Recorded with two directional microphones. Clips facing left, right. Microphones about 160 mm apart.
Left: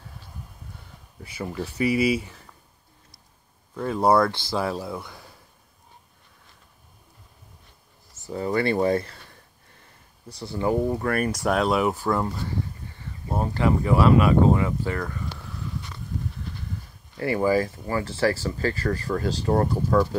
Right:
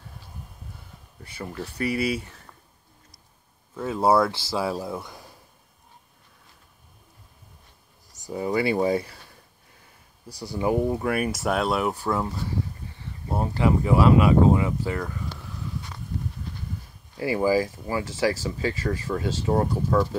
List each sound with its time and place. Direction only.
1.2 s speech: 5° left (ahead or behind)
3.7 s speech: 5° right (ahead or behind)
8.1 s a sound: 15° right (ahead or behind)
10.3 s speech: 15° right (ahead or behind)
17.2 s speech: 10° right (ahead or behind)